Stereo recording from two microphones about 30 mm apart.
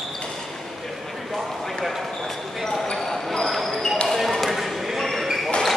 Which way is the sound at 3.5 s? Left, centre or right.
Centre.